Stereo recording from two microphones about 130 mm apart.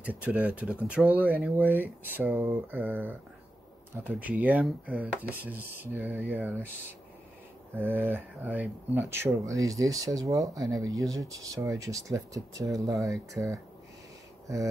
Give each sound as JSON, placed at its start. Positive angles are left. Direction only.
{"t": 0.0, "sound": "speech", "side_deg": -10}
{"t": 7.7, "sound": "speech", "side_deg": -15}
{"t": 12.9, "sound": "speech", "side_deg": 0}